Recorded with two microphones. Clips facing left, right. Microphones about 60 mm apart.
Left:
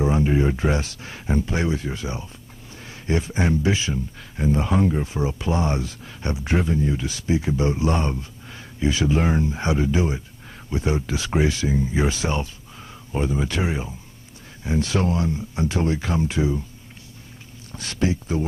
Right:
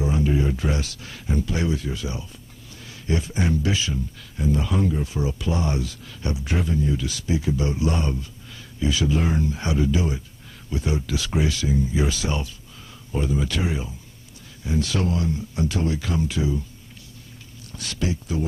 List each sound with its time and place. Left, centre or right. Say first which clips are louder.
0.0 s speech: left 3 dB; left
17.7 s speech: left 4 dB; left